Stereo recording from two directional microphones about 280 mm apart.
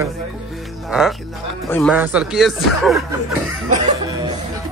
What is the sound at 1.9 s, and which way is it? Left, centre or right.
A man's voice, centre.